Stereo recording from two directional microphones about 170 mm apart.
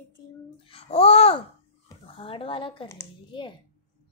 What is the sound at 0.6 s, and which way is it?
A child's voice, 35° left (ahead or behind).